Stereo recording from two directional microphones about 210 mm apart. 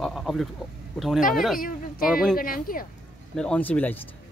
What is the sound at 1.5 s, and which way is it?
Speech, 40° left (ahead or behind).